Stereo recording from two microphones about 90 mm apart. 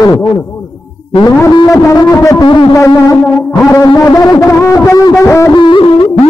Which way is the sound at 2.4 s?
65° left (ahead or behind).